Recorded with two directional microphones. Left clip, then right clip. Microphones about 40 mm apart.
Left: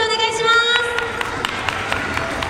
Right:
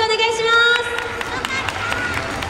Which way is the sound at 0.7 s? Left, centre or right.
Centre.